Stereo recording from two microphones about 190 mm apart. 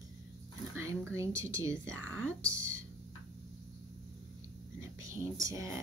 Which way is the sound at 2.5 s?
15° right (ahead or behind).